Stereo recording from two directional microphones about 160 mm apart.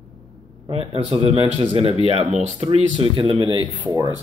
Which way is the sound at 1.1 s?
35° right (ahead or behind).